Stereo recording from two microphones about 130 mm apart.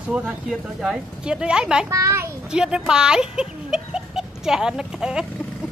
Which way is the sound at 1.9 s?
20° right (ahead or behind).